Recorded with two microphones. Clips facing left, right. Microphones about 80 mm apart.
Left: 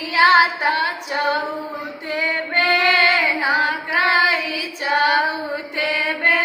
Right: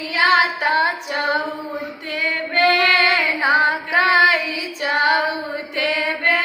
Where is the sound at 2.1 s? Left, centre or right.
Left.